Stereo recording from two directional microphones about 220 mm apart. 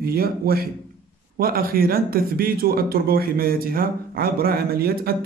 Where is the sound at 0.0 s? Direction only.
45° right (ahead or behind).